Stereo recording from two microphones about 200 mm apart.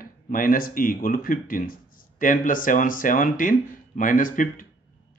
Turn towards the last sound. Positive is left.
turn(degrees=40)  # may be behind; listen again after turning